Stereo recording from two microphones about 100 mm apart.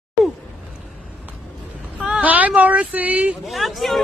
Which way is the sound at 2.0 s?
15° right (ahead or behind).